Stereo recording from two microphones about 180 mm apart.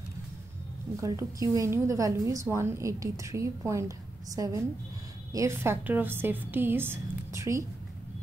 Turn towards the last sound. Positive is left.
turn(degrees=-15)  # may be behind; listen again after turning